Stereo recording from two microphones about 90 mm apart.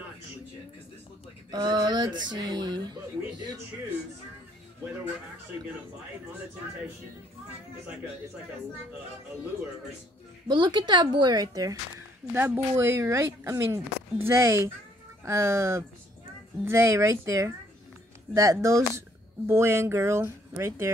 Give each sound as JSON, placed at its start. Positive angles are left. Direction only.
{"t": 1.5, "sound": "speech", "side_deg": -50}
{"t": 10.5, "sound": "a woman's voice", "side_deg": -55}
{"t": 12.3, "sound": "speech", "side_deg": -25}